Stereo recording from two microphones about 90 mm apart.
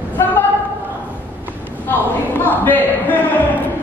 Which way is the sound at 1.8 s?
20° left (ahead or behind).